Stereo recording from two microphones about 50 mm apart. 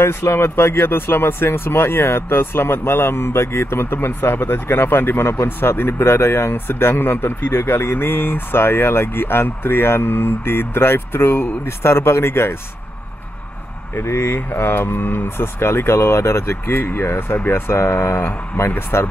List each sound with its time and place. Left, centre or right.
0.0 s speech: left
13.9 s speech: left